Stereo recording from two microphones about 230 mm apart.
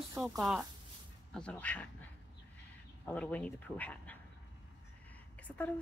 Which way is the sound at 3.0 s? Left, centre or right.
Centre.